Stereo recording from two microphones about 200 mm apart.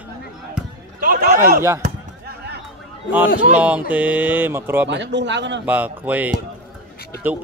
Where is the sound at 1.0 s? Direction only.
45° right (ahead or behind).